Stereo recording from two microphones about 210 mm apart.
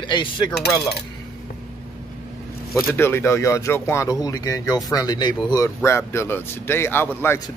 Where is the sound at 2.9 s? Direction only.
10° left (ahead or behind).